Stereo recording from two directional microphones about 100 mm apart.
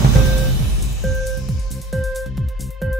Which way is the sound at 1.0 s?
Centre (ahead or behind).